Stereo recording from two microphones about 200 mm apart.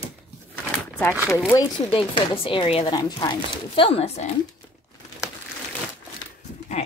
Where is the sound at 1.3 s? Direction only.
15° left (ahead or behind).